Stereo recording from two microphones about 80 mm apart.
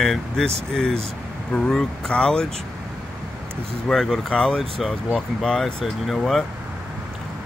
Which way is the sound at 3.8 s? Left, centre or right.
Centre.